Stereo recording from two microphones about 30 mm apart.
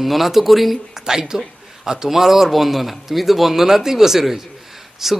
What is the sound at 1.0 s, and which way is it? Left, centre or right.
A man's voice, right.